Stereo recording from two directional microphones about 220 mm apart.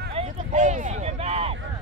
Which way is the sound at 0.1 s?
30° right (ahead or behind).